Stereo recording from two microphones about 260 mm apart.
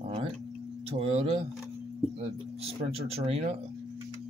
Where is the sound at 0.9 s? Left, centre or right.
Right.